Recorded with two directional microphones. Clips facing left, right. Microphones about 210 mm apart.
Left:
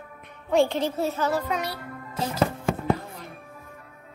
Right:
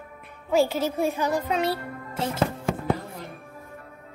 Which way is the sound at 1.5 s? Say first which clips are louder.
Right 4 dB; 25° right (ahead or behind).